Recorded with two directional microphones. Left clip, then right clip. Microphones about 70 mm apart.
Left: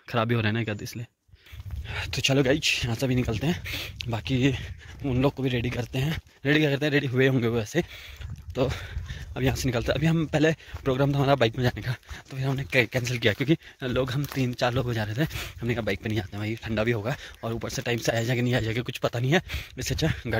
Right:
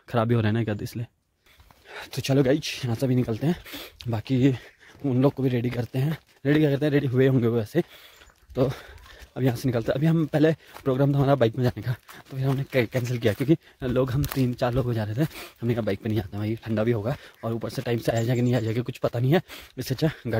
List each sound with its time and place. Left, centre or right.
0.1 s speech: right
0.7 s speech: right
2.0 s speech: centre
2.4 s speech: centre
3.6 s speech: right
5.9 s speech: centre
8.5 s speech: right
9.3 s speech: centre
13.9 s speech: right
14.7 s speech: centre
17.6 s speech: right
19.5 s speech: right